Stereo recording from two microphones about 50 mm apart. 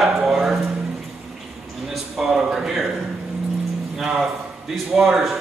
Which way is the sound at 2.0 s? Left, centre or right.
Centre.